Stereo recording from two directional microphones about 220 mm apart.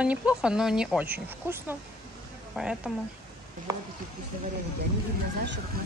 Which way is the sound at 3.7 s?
15° right (ahead or behind).